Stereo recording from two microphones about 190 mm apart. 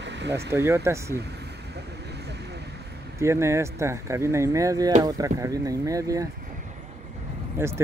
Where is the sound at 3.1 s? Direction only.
15° right (ahead or behind).